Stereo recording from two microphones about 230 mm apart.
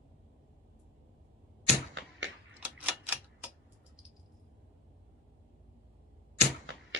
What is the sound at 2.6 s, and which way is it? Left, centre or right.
Typewriter, centre.